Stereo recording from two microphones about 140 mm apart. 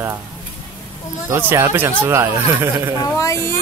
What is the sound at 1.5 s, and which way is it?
Speech, 15° right (ahead or behind).